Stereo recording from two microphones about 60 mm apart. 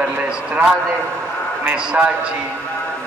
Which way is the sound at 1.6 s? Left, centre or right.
Right.